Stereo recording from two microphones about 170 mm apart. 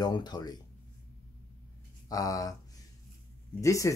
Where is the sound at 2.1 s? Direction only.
20° left (ahead or behind).